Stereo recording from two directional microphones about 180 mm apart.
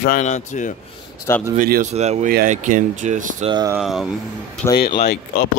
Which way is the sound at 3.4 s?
25° right (ahead or behind).